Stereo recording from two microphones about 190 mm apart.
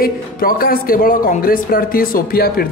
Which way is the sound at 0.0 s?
50° left (ahead or behind).